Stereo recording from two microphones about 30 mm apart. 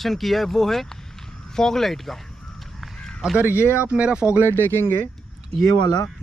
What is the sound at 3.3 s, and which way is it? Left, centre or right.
Speech, right.